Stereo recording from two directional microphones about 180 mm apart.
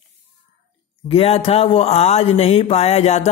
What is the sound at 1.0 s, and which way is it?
Speech, 30° left (ahead or behind).